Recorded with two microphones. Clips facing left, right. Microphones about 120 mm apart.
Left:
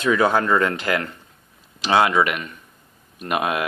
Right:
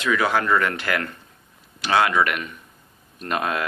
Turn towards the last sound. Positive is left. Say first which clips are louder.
# left 2 dB
turn(degrees=15)  # may be behind; listen again after turning